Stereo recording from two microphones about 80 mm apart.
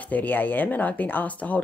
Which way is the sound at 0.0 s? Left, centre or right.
Centre.